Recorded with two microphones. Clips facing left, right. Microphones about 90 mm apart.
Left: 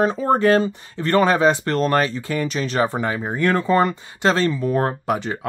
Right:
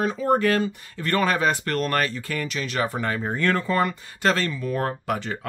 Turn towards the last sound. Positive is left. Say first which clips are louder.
# left 4 dB
turn(degrees=20)  # may be behind; listen again after turning